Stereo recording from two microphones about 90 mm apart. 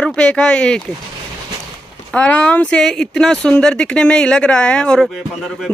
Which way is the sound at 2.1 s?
15° left (ahead or behind).